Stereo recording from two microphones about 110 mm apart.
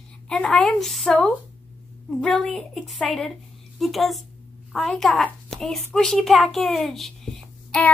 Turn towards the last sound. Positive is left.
turn(degrees=5)  # may be behind; listen again after turning